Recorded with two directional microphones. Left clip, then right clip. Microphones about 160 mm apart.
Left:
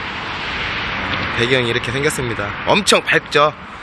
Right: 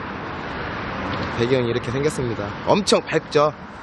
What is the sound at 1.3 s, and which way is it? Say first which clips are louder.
A man's voice: left 4 dB; 10° right (ahead or behind).